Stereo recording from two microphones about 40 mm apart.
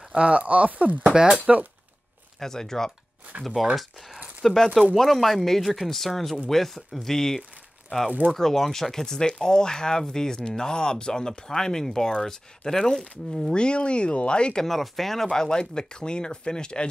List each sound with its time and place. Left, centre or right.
0.1 s speech: right
2.4 s speech: centre
13.6 s speech: left
14.6 s speech: centre; by 16.9 s left